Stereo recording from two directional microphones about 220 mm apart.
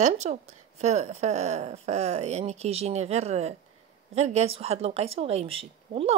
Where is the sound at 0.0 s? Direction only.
30° right (ahead or behind).